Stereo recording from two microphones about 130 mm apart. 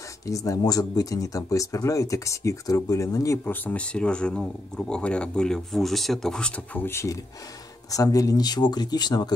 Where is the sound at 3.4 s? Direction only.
10° left (ahead or behind).